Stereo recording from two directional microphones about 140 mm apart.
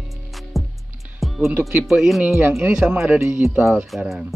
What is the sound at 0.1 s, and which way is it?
Music, centre (ahead or behind).